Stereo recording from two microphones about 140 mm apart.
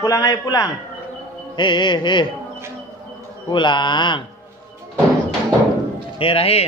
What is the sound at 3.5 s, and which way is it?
Speech, 35° left (ahead or behind).